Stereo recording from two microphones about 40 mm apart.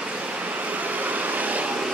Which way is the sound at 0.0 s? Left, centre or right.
Right.